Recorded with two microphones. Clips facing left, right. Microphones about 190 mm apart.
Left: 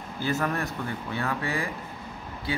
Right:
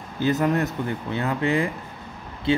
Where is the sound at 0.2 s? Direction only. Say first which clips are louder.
Right 7 dB; 20° right (ahead or behind).